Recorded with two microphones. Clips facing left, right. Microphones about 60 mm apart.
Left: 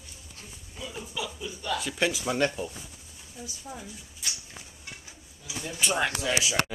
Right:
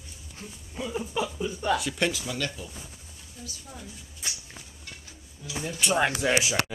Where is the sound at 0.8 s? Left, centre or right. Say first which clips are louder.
Right 7 dB; right.